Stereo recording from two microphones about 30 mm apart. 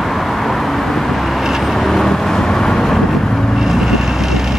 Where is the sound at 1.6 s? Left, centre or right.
Centre.